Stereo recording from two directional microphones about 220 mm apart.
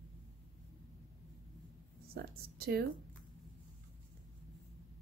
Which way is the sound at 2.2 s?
45° right (ahead or behind).